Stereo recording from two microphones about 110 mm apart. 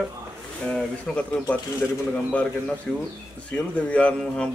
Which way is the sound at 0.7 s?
10° left (ahead or behind).